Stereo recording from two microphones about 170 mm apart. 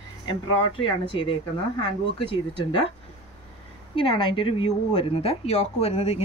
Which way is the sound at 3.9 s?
30° left (ahead or behind).